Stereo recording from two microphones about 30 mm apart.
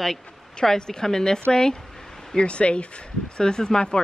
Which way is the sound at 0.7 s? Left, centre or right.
Left.